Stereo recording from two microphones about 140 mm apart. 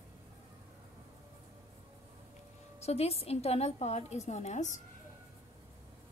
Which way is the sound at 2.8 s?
45° left (ahead or behind).